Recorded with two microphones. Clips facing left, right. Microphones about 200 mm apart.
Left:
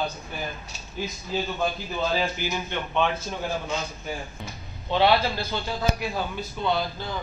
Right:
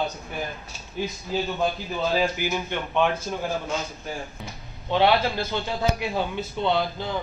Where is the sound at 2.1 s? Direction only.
10° right (ahead or behind).